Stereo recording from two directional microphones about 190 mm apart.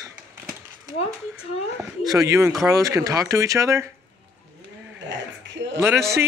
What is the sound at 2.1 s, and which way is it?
Speech, 15° right (ahead or behind).